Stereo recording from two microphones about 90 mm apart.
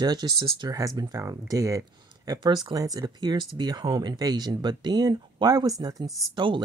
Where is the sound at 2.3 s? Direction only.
55° right (ahead or behind).